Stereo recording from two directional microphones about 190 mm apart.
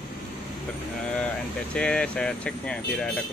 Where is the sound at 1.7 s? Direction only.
5° left (ahead or behind).